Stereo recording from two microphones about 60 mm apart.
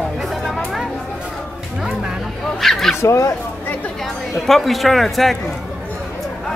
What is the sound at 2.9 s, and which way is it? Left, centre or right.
Speech, left.